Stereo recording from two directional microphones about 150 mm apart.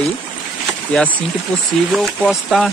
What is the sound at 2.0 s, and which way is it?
Speech, centre (ahead or behind).